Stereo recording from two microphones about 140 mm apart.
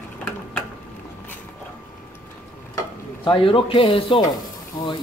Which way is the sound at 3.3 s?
40° left (ahead or behind).